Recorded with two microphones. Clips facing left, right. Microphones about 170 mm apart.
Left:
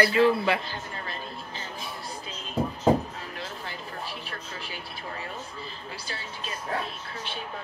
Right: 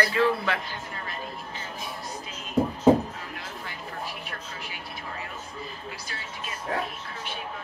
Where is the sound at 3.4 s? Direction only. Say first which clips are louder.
Left 1 dB; 30° left (ahead or behind).